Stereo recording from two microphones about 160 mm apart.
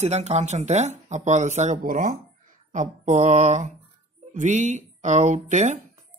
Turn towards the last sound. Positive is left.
turn(degrees=-50)  # may be behind; listen again after turning